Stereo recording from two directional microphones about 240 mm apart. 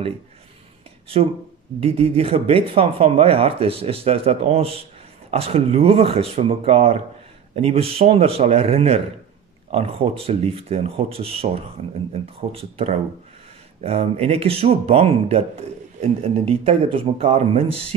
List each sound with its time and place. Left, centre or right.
1.8 s speech: right